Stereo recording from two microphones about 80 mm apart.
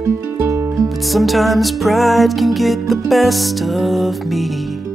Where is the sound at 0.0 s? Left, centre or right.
Right.